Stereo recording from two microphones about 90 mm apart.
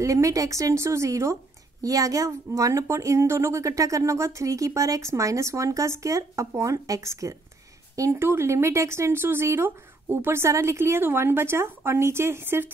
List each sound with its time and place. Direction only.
0.0 s a woman's voice: 35° right (ahead or behind)